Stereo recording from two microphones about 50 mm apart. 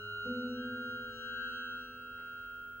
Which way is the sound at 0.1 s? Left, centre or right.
Left.